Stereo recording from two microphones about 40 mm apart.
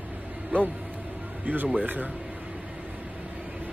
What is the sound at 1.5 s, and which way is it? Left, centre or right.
Speech, right.